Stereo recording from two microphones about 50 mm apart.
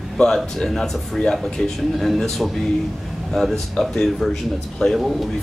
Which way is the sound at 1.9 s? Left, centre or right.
Centre.